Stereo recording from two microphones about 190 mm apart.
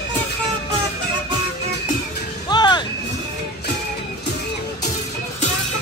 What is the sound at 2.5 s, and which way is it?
Music, 20° left (ahead or behind).